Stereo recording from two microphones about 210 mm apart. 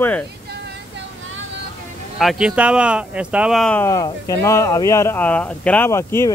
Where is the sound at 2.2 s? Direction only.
Centre (ahead or behind).